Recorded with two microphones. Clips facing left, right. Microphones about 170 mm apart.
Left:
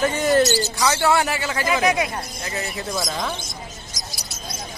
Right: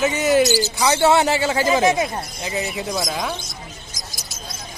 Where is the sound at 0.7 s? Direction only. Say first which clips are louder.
Right 4 dB; 20° right (ahead or behind); by 3.3 s 5° right (ahead or behind).